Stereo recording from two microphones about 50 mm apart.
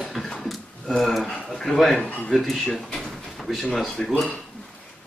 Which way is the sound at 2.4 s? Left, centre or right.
Centre.